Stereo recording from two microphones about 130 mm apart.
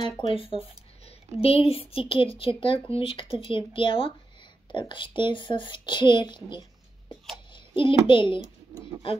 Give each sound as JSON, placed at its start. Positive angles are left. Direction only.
{"t": 0.3, "sound": "a child's voice", "side_deg": 45}